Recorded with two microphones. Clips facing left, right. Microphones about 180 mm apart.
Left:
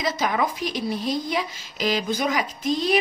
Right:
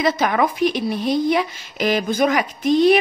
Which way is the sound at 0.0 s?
60° right (ahead or behind).